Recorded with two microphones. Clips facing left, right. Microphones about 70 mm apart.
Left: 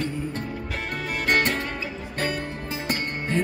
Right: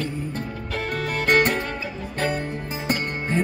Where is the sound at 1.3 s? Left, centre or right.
Right.